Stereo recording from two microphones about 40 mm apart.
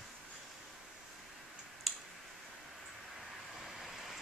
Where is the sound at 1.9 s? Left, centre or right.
Centre.